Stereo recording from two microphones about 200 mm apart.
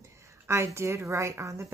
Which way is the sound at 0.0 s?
15° right (ahead or behind).